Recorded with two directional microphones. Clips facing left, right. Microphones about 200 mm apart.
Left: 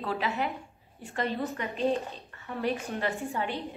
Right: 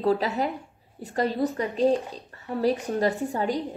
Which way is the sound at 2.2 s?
40° right (ahead or behind).